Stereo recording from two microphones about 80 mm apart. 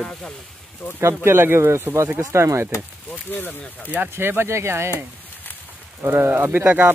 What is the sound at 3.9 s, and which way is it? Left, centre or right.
Speech, right.